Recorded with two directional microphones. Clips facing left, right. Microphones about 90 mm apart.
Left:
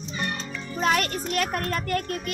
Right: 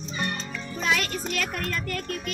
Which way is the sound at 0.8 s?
45° left (ahead or behind).